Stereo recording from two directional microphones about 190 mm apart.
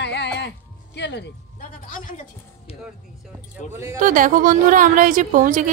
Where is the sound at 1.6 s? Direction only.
40° left (ahead or behind).